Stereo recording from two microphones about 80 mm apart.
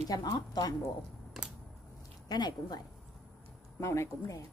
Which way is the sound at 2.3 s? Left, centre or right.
Left.